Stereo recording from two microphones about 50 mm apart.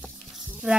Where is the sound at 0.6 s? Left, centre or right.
Centre.